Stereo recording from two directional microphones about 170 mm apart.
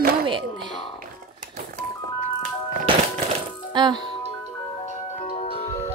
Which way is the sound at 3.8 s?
25° right (ahead or behind).